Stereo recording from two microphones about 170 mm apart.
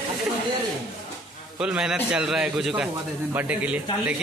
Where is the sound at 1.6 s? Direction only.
5° right (ahead or behind).